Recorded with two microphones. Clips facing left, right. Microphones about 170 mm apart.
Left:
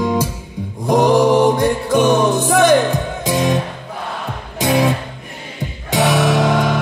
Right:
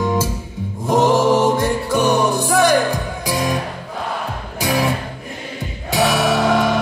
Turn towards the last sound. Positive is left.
turn(degrees=20)  # may be behind; listen again after turning